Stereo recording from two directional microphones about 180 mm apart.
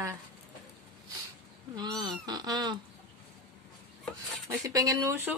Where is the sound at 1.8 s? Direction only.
25° right (ahead or behind).